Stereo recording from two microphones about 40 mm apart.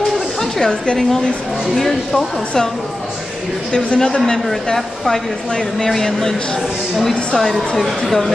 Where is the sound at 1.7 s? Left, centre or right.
Centre.